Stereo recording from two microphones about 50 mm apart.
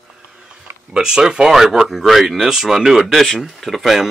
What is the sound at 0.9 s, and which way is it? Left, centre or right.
Speech, centre.